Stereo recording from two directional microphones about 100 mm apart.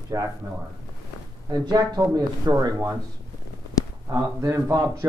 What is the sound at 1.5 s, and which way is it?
Speech, 45° right (ahead or behind).